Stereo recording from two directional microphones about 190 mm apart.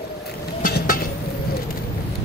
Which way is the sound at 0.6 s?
50° left (ahead or behind).